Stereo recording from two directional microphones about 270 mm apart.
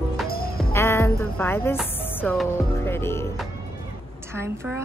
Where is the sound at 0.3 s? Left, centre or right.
Left.